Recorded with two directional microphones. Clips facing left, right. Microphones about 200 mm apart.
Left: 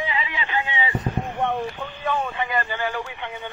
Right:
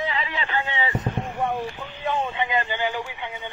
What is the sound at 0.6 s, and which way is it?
Vehicle, 15° left (ahead or behind).